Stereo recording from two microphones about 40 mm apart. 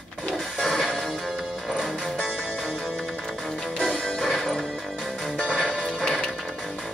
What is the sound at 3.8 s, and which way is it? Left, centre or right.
Music, centre.